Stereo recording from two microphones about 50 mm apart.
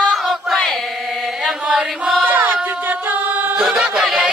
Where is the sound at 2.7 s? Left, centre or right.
Right.